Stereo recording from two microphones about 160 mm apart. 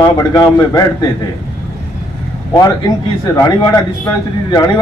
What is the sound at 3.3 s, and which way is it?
A man's voice, 25° left (ahead or behind).